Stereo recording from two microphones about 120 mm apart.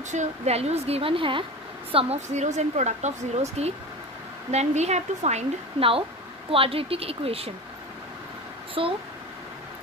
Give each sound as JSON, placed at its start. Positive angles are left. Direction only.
{"t": 0.1, "sound": "a woman's voice", "side_deg": -70}
{"t": 2.3, "sound": "a woman's voice", "side_deg": -75}
{"t": 8.8, "sound": "a woman's voice", "side_deg": -45}